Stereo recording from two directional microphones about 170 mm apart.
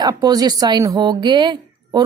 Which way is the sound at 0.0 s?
20° right (ahead or behind).